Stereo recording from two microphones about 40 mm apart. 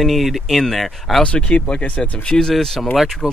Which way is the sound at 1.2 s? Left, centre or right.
Left.